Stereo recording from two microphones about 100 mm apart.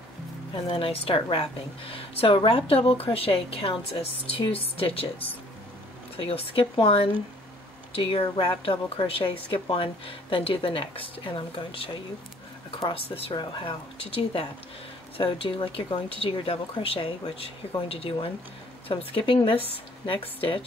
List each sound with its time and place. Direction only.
0.7 s a woman's voice: 65° left (ahead or behind)
13.4 s a woman's voice: 55° left (ahead or behind)
15.1 s a woman's voice: 65° left (ahead or behind)
17.8 s a woman's voice: 75° left (ahead or behind)
18.9 s a woman's voice: 60° left (ahead or behind)